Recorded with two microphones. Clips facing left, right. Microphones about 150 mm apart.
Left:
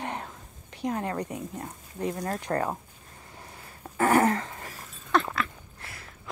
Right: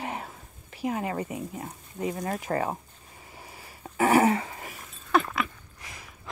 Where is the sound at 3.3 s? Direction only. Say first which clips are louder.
Even; 5° right (ahead or behind).